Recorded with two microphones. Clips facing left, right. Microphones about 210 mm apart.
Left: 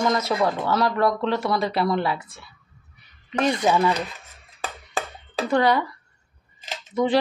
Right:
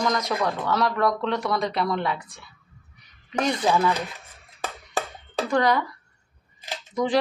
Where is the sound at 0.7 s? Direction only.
Centre (ahead or behind).